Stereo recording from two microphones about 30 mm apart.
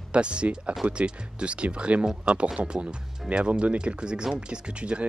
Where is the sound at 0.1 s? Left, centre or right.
Right.